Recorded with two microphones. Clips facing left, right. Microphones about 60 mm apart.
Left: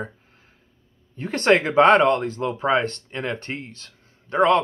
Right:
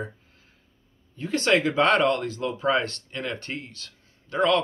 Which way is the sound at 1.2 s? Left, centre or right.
Left.